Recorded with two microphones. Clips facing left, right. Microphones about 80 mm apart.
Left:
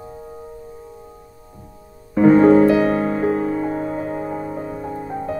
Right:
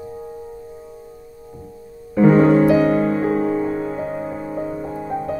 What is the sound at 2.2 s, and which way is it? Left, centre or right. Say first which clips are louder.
Music: left 2 dB; centre.